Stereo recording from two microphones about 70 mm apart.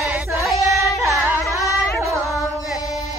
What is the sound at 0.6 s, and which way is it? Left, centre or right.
Singing, right.